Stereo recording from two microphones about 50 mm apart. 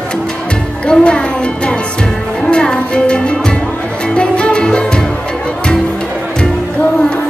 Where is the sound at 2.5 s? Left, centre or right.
Centre.